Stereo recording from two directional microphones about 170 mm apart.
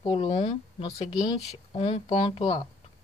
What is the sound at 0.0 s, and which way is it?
Speech, 30° left (ahead or behind).